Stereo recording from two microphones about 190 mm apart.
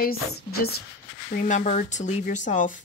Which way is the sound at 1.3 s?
45° left (ahead or behind).